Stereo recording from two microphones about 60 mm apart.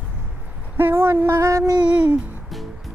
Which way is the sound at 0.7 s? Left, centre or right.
Right.